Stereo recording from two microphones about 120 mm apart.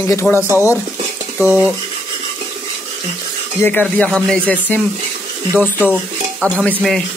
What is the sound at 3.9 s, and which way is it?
Speech, 10° left (ahead or behind).